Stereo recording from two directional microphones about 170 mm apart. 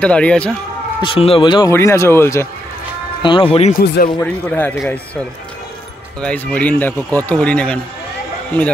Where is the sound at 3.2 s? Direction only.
30° left (ahead or behind).